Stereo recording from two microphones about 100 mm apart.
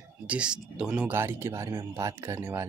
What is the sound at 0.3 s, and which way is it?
Speech, 10° right (ahead or behind).